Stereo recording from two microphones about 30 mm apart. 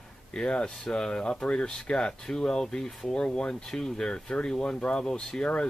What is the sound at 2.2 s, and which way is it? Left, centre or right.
Speech, left.